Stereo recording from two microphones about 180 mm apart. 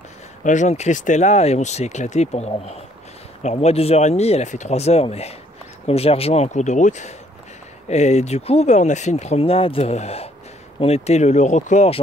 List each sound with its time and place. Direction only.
0.4 s speech: 45° left (ahead or behind)